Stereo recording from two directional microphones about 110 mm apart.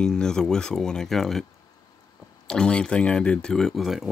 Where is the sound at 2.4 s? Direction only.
10° left (ahead or behind).